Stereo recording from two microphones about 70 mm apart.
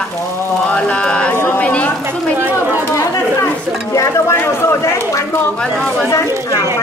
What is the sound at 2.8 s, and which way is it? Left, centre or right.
Speech, left.